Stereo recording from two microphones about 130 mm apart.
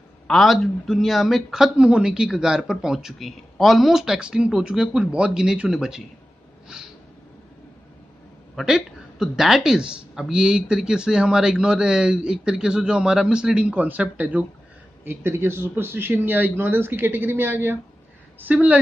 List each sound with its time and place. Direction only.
0.3 s speech: centre (ahead or behind)
8.5 s a man's voice: 5° right (ahead or behind)